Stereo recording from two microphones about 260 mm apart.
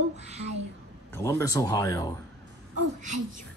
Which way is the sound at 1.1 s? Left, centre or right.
Centre.